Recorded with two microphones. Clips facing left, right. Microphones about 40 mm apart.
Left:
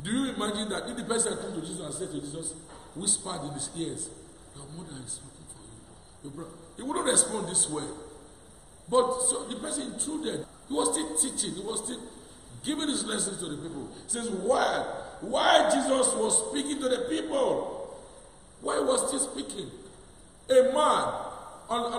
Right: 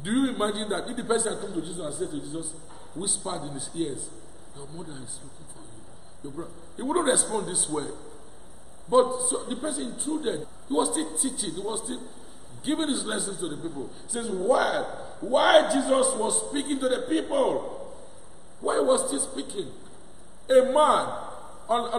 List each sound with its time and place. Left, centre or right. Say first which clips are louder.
0.0 s a man's voice: right 5 dB; centre
6.2 s a man's voice: right 4 dB; centre